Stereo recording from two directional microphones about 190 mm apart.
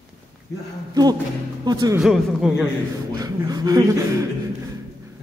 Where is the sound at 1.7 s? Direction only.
20° right (ahead or behind).